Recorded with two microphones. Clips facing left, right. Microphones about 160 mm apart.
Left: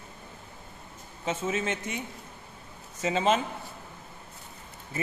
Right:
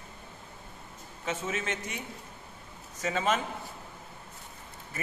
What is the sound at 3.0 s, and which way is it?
Speech, 25° left (ahead or behind).